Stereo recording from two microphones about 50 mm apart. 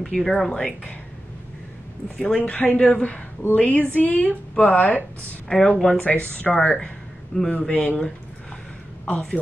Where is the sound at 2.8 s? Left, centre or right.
Left.